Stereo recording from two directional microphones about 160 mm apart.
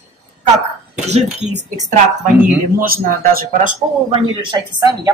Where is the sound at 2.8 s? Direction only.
65° right (ahead or behind).